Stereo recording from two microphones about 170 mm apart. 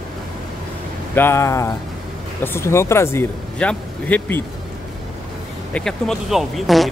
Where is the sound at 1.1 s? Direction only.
15° left (ahead or behind).